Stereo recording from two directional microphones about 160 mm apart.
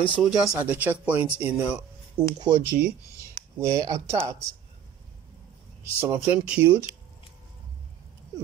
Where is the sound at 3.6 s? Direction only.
20° right (ahead or behind).